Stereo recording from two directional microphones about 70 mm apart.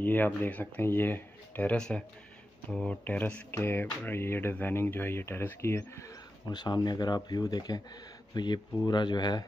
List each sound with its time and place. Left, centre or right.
0.0 s speech: left
1.8 s speech: centre
3.5 s speech: left
6.5 s speech: left
7.2 s speech: left
8.3 s speech: left